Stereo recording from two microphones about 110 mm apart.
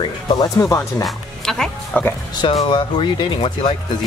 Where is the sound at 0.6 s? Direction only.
25° left (ahead or behind).